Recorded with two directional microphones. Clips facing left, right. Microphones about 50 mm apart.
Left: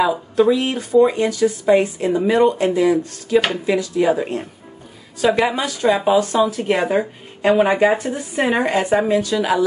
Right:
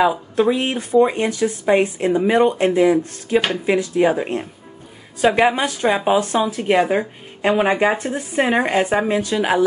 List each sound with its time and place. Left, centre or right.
0.0 s a woman's voice: right
9.2 s speech: right